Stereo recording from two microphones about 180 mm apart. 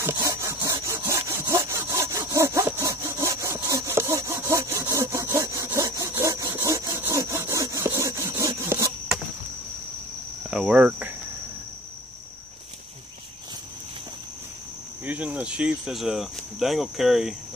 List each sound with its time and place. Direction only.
0.0 s sawing: 15° right (ahead or behind)
10.5 s cricket: 5° right (ahead or behind)
15.0 s speech: 10° right (ahead or behind)